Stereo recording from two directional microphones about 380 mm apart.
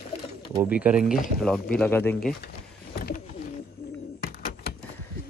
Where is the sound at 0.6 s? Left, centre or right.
Centre.